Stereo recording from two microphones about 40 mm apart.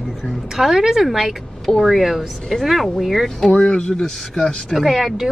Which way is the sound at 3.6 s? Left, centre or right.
Left.